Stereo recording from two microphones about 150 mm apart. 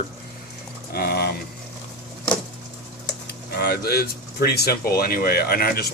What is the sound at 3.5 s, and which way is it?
Speech, 90° left.